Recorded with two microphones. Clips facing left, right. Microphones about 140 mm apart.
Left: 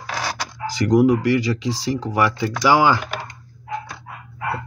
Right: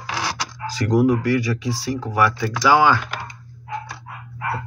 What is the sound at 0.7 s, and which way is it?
Speech, 15° left (ahead or behind).